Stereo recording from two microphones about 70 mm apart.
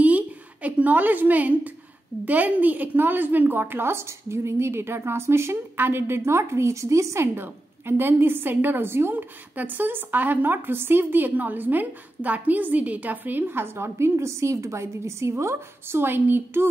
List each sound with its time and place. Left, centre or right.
0.0 s a sound: right
2.2 s a woman's voice: right
7.3 s a woman's voice: right